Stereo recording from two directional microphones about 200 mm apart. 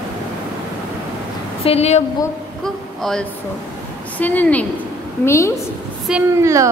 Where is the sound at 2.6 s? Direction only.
Centre (ahead or behind).